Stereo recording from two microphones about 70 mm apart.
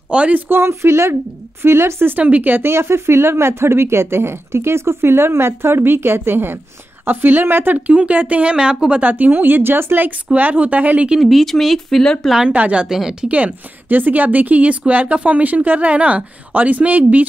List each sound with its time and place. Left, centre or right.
0.1 s speech: centre
0.5 s a woman's voice: right
11.1 s speech: centre
12.3 s speech: centre
12.5 s speech: right
12.8 s speech: centre
13.3 s speech: right